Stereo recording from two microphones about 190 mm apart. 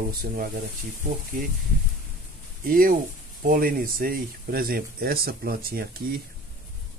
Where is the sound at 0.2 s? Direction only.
50° right (ahead or behind).